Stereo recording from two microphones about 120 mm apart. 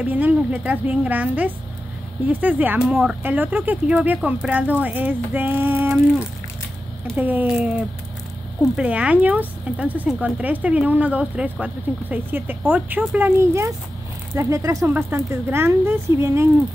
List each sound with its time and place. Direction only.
0.0 s speech: 15° right (ahead or behind)
8.7 s speech: 10° right (ahead or behind); by 14.9 s 25° right (ahead or behind)
14.9 s speech: 15° right (ahead or behind)